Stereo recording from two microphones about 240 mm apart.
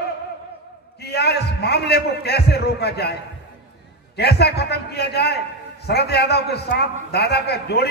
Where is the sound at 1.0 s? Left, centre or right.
Left.